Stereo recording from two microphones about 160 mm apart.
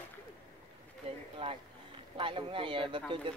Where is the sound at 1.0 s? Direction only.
40° right (ahead or behind).